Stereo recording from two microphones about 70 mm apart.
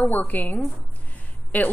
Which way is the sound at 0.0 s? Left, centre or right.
Left.